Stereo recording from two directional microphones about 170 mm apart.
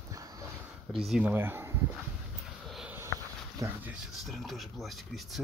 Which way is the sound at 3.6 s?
20° right (ahead or behind).